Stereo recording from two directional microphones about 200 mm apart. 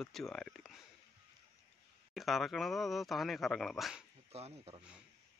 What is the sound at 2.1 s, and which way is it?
Speech, centre (ahead or behind).